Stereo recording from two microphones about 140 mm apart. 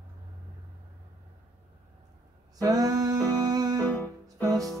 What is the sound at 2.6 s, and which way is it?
Music, 25° right (ahead or behind).